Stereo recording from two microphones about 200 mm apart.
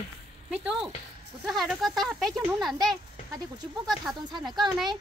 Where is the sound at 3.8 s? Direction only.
Centre (ahead or behind).